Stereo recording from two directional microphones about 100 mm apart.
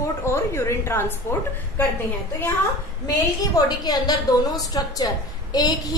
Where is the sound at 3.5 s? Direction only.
40° left (ahead or behind).